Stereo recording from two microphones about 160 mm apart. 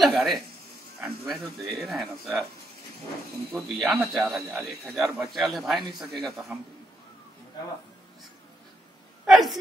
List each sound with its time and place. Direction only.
0.0 s a man's voice: centre (ahead or behind)
3.5 s speech: 5° right (ahead or behind)
9.2 s speech: centre (ahead or behind)